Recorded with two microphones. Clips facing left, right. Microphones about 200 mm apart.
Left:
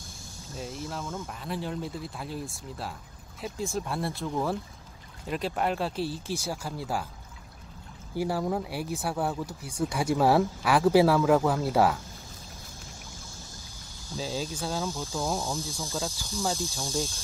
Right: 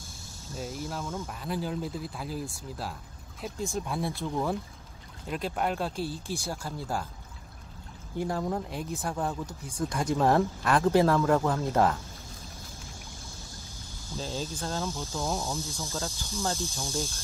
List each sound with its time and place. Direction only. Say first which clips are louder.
0.5 s speech: right 1 dB; centre (ahead or behind)
8.2 s speech: left 2 dB; 5° left (ahead or behind)
14.1 s speech: left 2 dB; 5° left (ahead or behind)
16.8 s speech: left 3 dB; 15° left (ahead or behind)